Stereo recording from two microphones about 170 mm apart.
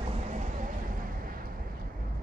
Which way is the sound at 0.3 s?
50° right (ahead or behind).